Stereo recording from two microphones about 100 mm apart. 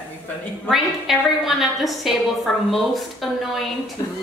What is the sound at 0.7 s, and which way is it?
A woman's voice, 5° right (ahead or behind).